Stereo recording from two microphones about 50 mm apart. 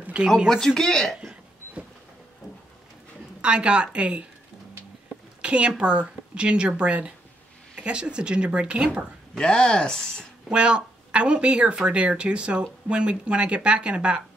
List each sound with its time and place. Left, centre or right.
0.2 s speech: right
0.5 s speech: centre
3.3 s speech: right
5.4 s a woman's voice: right
9.4 s speech: centre
10.5 s speech: right